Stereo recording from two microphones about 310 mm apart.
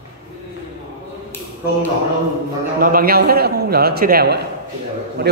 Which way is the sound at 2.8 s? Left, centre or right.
Right.